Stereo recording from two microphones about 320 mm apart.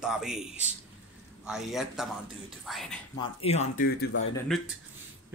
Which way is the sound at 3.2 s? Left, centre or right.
Centre.